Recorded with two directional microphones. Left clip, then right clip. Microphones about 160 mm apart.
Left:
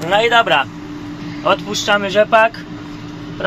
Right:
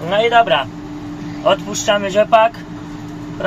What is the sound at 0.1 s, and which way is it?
Speech, 25° left (ahead or behind).